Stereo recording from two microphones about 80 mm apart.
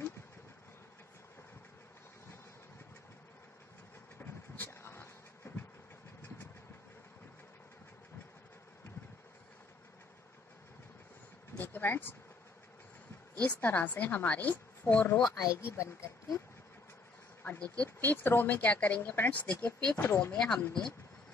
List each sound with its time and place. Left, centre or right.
4.2 s train: left
11.5 s a sound: left
13.4 s a woman's voice: left
15.2 s speech: left
17.4 s a sound: left
17.8 s a woman's voice: left
20.0 s a woman's voice: left
20.3 s speech: centre